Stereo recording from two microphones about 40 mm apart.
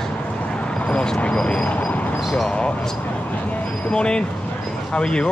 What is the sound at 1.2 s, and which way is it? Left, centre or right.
Speech, left.